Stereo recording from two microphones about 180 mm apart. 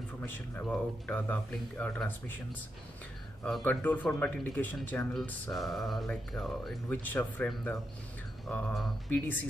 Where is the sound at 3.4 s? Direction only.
5° left (ahead or behind).